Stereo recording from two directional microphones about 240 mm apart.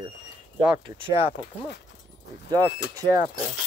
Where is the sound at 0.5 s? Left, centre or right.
Centre.